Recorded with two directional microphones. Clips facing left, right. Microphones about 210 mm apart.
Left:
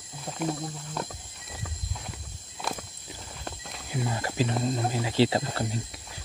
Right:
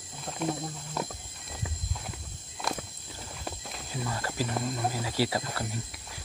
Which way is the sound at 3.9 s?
15° left (ahead or behind).